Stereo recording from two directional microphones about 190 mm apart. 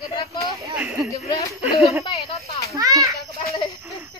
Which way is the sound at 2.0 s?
30° left (ahead or behind).